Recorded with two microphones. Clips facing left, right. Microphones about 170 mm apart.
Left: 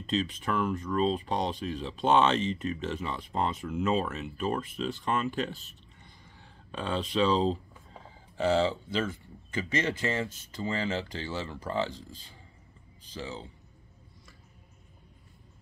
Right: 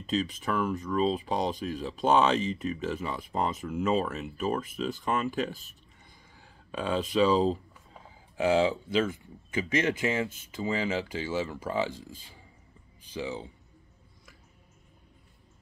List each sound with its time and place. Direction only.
0.0 s speech: centre (ahead or behind)
13.0 s speech: 15° right (ahead or behind)